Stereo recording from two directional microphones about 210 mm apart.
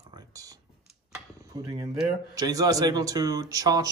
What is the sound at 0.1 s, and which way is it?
Computer keyboard, 15° right (ahead or behind).